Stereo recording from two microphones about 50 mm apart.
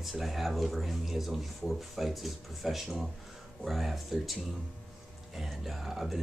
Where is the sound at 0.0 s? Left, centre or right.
Centre.